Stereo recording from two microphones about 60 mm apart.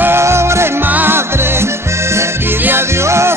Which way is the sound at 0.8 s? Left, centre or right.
Right.